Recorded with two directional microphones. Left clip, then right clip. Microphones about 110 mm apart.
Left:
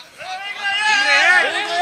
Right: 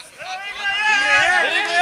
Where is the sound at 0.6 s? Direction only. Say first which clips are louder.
Left 1 dB; 15° left (ahead or behind).